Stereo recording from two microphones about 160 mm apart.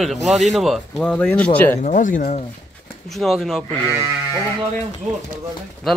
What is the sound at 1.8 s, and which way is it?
Speech, 50° left (ahead or behind).